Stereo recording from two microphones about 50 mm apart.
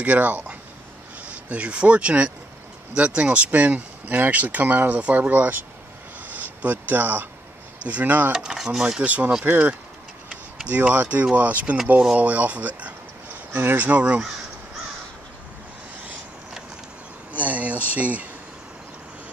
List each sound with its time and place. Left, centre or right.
0.0 s speech: right
7.8 s speech: right
8.4 s speech: centre
9.0 s speech: right
10.3 s a sound: right
11.3 s speech: right
13.5 s speech: right
13.7 s speech: right
17.3 s speech: right